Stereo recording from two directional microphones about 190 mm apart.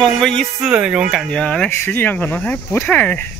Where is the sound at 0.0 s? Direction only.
5° left (ahead or behind).